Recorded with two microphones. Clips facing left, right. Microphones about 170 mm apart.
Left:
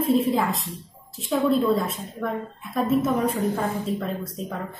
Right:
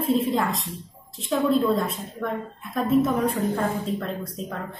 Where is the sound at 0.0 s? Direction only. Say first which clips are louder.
Left 2 dB; centre (ahead or behind).